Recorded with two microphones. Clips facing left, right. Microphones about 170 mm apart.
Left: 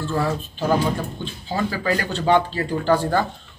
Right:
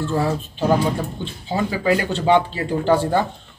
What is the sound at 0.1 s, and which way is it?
Speech, 25° right (ahead or behind).